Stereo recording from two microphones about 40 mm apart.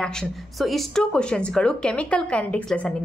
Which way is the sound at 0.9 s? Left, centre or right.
Left.